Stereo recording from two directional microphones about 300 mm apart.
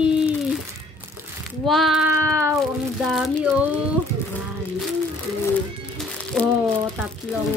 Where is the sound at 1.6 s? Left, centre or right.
Centre.